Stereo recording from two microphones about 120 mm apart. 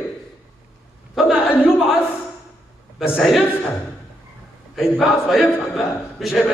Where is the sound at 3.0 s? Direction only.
Centre (ahead or behind).